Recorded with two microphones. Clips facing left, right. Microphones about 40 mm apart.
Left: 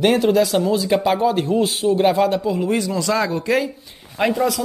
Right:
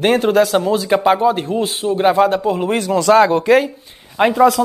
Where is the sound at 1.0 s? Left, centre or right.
Right.